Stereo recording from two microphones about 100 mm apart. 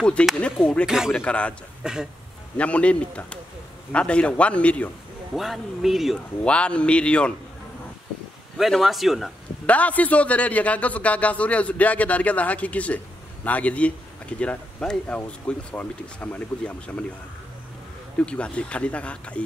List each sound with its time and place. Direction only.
0.0 s a man's voice: 10° left (ahead or behind)
0.8 s speech: 5° right (ahead or behind)
1.1 s a man's voice: 10° left (ahead or behind)
1.8 s speech: 5° right (ahead or behind)
2.5 s a man's voice: 15° left (ahead or behind)
5.3 s speech: centre (ahead or behind)
6.4 s a man's voice: 10° left (ahead or behind)
8.5 s speech: centre (ahead or behind)
9.7 s a man's voice: 15° left (ahead or behind)
18.2 s a man's voice: 10° left (ahead or behind)